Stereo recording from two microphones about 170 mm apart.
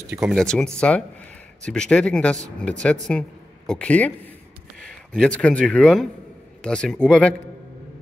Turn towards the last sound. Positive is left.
turn(degrees=5)  # may be behind; listen again after turning